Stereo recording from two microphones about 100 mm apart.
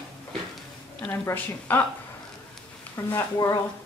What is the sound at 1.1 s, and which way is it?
Speech, 20° left (ahead or behind).